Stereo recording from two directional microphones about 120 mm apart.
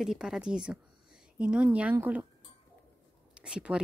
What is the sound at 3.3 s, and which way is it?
Speech, 10° right (ahead or behind).